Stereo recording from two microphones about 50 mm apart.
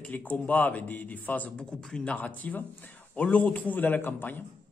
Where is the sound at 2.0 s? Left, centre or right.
Left.